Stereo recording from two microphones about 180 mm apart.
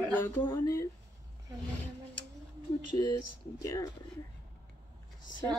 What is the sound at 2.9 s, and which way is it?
Speech, 25° left (ahead or behind).